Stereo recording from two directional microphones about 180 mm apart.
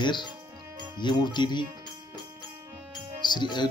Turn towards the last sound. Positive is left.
turn(degrees=25)  # may be behind; listen again after turning